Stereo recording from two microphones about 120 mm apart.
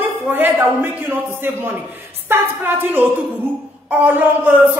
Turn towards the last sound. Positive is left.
turn(degrees=-15)  # may be behind; listen again after turning